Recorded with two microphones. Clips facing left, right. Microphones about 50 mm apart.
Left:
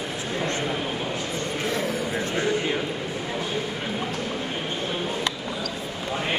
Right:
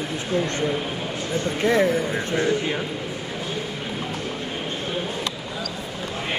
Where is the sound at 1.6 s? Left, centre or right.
Right.